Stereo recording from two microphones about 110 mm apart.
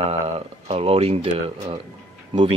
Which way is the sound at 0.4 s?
60° right (ahead or behind).